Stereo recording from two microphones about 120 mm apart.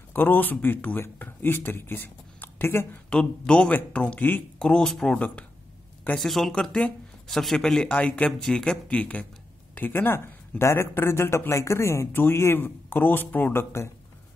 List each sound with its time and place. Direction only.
0.1 s speech: 15° left (ahead or behind)
3.1 s speech: 10° left (ahead or behind)